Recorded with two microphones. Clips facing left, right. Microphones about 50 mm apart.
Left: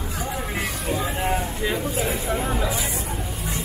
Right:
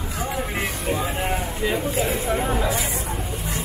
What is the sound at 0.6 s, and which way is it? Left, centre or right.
Music, centre.